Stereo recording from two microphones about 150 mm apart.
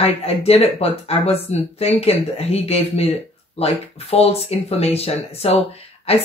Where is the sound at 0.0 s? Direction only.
45° left (ahead or behind).